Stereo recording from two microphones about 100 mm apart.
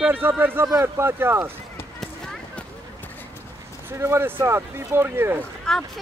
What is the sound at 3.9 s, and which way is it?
Speech, 25° right (ahead or behind).